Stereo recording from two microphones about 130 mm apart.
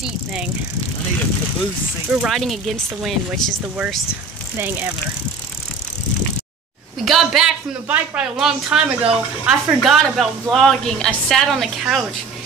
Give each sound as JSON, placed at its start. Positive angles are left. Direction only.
{"t": 0.0, "sound": "speech", "side_deg": -5}
{"t": 2.2, "sound": "a man's voice", "side_deg": 0}
{"t": 7.1, "sound": "a man's voice", "side_deg": -5}